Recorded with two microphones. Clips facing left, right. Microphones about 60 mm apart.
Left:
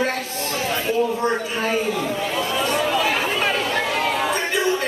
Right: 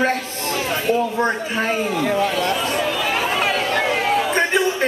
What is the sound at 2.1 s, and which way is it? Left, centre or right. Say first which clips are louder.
Speech: right 4 dB; right.